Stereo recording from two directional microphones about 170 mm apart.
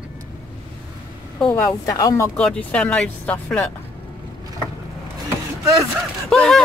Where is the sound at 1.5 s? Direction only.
15° left (ahead or behind).